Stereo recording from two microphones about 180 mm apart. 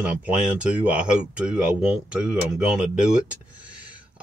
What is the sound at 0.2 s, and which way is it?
Speech, 5° right (ahead or behind).